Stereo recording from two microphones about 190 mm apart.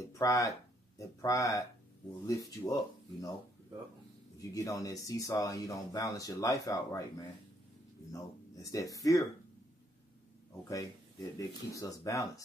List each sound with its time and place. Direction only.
0.0 s speech: 15° left (ahead or behind)
4.4 s speech: 20° left (ahead or behind)
11.3 s speech: 15° left (ahead or behind)